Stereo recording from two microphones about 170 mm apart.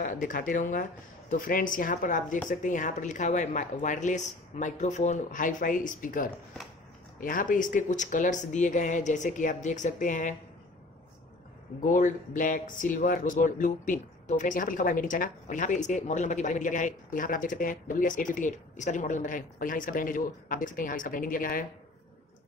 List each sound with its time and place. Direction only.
0.0 s speech: 55° left (ahead or behind)
11.8 s speech: 50° left (ahead or behind)